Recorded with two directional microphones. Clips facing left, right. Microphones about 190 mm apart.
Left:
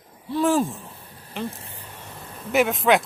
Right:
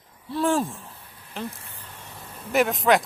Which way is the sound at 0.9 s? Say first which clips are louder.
Left 3 dB; 35° left (ahead or behind).